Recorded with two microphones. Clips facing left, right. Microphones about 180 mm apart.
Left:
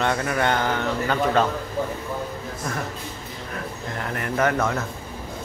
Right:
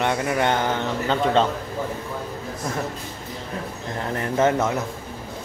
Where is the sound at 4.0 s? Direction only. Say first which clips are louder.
Right 3 dB; 25° right (ahead or behind).